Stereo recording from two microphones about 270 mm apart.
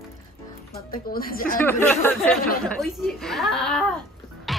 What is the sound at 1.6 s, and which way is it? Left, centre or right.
Speech, centre.